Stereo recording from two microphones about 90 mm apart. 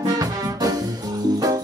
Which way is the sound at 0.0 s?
40° right (ahead or behind).